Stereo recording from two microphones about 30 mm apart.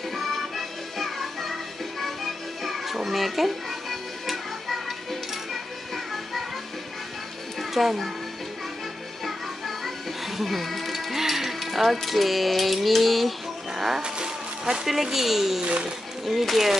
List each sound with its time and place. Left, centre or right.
0.1 s music: centre
7.5 s a child's voice: centre
9.2 s music: centre
14.0 s music: right
14.9 s speech: centre
15.6 s speech: right
16.3 s speech: centre